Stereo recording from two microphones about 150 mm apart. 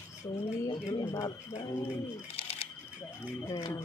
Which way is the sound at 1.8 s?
40° left (ahead or behind).